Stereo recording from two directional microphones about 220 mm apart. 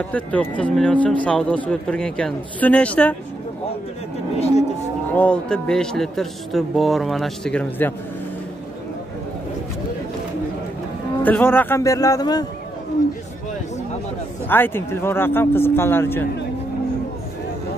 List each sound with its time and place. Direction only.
0.1 s speech: 5° left (ahead or behind)
5.1 s speech: 5° left (ahead or behind)
11.2 s speech: 10° left (ahead or behind)
14.5 s speech: 10° left (ahead or behind)